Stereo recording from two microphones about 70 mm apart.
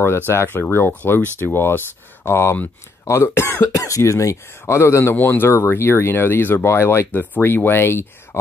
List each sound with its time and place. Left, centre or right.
0.3 s speech: left
3.7 s speech: left
5.1 s speech: left
7.1 s speech: left